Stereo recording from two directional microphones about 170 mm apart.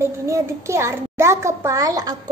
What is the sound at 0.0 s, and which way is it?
A woman's voice, 15° right (ahead or behind).